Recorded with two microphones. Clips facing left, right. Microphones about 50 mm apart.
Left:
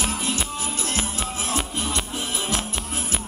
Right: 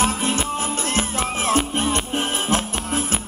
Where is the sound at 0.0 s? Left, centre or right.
Right.